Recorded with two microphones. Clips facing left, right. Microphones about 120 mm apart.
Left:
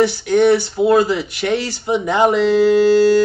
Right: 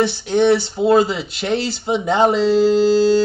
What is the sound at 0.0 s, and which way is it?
Speech, 25° right (ahead or behind).